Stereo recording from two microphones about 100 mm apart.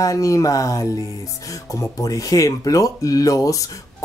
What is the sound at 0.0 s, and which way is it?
Speech, 35° left (ahead or behind).